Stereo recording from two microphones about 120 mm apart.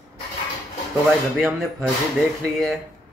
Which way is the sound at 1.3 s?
Centre (ahead or behind).